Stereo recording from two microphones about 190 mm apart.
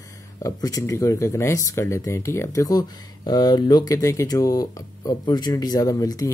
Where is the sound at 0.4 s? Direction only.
20° left (ahead or behind).